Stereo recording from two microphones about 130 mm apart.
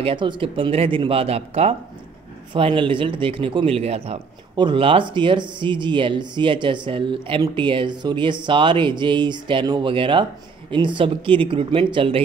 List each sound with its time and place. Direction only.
0.0 s speech: 40° right (ahead or behind)
2.5 s speech: 40° right (ahead or behind)
4.6 s speech: 40° right (ahead or behind)